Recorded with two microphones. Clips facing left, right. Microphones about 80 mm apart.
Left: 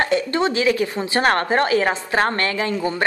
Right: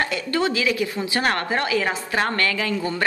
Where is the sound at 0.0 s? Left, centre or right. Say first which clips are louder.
Left 4 dB; left.